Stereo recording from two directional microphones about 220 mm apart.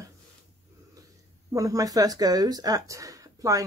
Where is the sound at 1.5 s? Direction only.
15° right (ahead or behind).